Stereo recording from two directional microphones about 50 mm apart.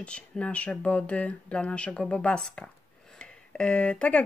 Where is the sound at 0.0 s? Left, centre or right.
Left.